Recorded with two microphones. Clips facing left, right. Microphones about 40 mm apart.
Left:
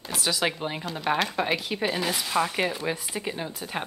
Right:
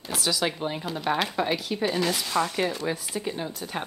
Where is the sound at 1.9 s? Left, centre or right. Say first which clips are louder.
Right 2 dB; centre.